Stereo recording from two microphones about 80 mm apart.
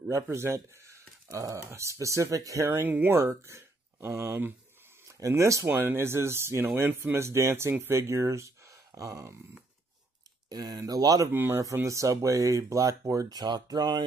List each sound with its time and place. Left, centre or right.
0.1 s speech: right
2.6 s speech: right
5.7 s speech: right
10.5 s speech: right
11.3 s speech: right
11.6 s speech: right